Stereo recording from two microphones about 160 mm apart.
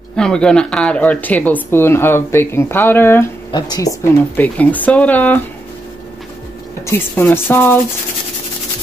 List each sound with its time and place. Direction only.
0.1 s speech: 5° left (ahead or behind)
3.5 s speech: 25° left (ahead or behind)
4.4 s speech: 10° left (ahead or behind)
6.9 s speech: 15° left (ahead or behind)